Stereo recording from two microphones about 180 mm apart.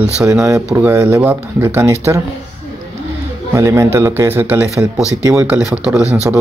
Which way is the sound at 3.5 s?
15° right (ahead or behind).